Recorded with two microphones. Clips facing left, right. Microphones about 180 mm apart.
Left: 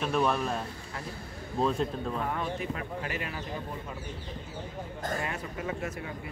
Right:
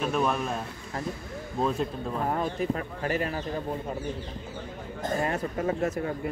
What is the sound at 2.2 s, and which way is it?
Speech, 40° right (ahead or behind).